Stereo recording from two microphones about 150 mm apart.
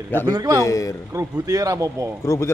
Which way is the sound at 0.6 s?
20° left (ahead or behind).